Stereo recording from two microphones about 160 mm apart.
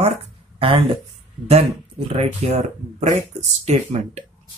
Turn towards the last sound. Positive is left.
turn(degrees=-45)  # may be behind; listen again after turning